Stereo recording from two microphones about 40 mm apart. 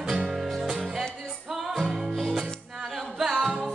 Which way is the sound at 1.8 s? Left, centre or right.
Centre.